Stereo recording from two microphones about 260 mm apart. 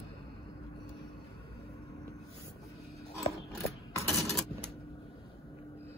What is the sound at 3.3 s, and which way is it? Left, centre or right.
Scissors, left.